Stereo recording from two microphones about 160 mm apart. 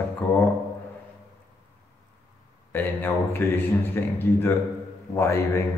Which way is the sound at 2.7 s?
10° left (ahead or behind).